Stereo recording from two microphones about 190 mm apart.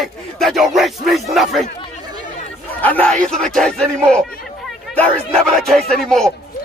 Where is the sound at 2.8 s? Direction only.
10° left (ahead or behind).